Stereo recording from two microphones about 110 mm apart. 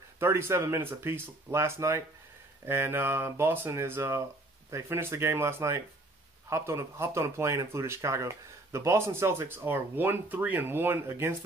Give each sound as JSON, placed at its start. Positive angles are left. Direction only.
{"t": 0.2, "sound": "speech", "side_deg": -25}